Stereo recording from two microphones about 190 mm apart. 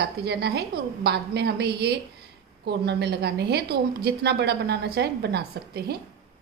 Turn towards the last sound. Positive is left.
turn(degrees=-55)  # may be behind; listen again after turning